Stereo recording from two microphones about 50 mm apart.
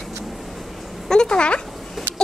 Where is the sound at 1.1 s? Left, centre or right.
Centre.